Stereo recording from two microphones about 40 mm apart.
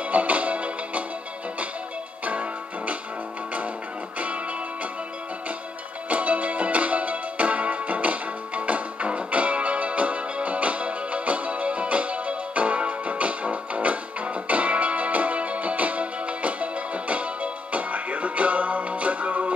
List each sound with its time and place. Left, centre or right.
0.1 s music: right
6.0 s music: right